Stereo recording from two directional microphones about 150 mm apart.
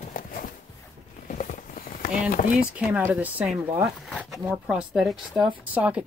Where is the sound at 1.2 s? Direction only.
60° left (ahead or behind).